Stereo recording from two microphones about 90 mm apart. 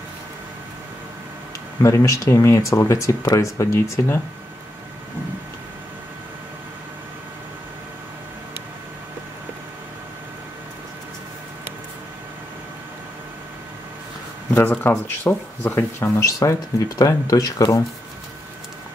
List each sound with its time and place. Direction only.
1.8 s speech: 35° left (ahead or behind)
14.5 s speech: 20° left (ahead or behind)
15.6 s speech: 30° left (ahead or behind)